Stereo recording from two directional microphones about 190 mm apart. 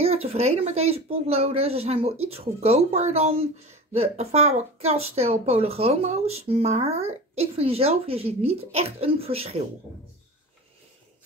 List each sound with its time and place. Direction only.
0.0 s speech: 30° right (ahead or behind)